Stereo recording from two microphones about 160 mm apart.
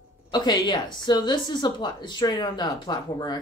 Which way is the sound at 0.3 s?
25° left (ahead or behind).